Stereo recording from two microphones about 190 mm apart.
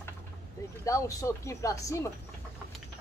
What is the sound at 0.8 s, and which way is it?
Speech, 15° left (ahead or behind).